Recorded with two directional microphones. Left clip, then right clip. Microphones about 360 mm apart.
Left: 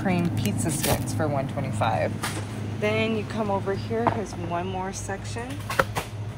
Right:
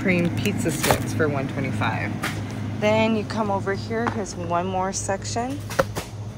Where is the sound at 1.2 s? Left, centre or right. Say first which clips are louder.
Right 2 dB; left.